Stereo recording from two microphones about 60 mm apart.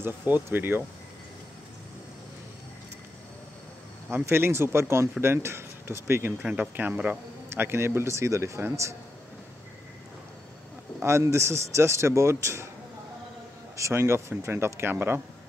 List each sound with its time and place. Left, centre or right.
0.0 s speech: right
4.1 s a man's voice: right
6.4 s speech: right
7.4 s a man's voice: right
11.0 s a man's voice: right
13.7 s a man's voice: right